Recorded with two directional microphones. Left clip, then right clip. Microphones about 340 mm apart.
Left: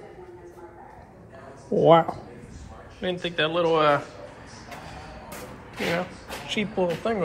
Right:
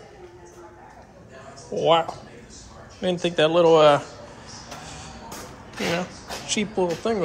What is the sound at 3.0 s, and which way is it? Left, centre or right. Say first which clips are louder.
Speech: right 5 dB; centre.